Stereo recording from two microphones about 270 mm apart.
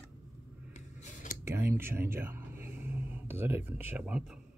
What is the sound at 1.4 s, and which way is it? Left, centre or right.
Speech, centre.